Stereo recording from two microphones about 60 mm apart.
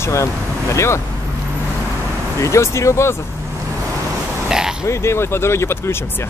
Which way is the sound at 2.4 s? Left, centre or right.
Left.